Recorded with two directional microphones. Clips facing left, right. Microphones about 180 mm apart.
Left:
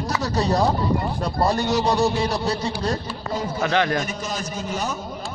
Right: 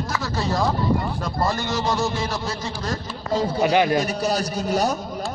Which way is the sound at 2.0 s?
35° left (ahead or behind).